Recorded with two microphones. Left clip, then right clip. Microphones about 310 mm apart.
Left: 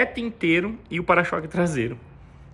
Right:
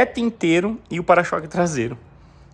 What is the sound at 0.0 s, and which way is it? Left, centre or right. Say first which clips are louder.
Speech: right 4 dB; centre.